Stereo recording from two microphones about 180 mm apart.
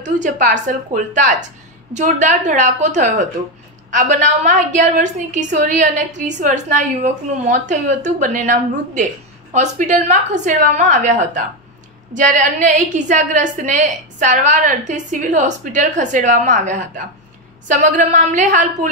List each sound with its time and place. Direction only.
0.0 s a woman's voice: 45° right (ahead or behind)